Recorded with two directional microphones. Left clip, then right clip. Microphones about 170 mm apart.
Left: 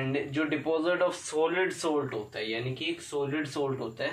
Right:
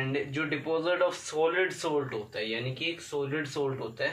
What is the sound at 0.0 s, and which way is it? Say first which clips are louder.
Speech: left 1 dB; 25° left (ahead or behind).